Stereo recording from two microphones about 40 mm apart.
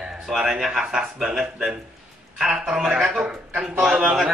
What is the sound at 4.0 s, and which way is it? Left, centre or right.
Speech, centre.